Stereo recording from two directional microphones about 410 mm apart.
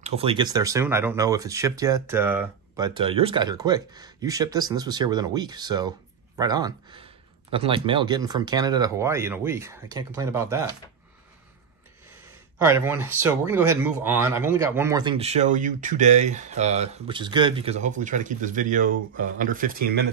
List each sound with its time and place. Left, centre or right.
0.0 s speech: centre
12.6 s speech: centre; by 20.1 s right